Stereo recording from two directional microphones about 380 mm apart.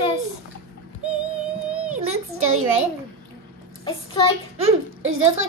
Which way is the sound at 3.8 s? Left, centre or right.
Centre.